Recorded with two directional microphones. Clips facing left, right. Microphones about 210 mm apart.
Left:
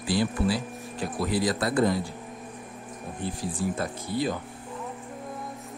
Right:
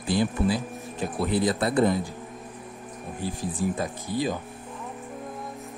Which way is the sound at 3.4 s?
15° right (ahead or behind).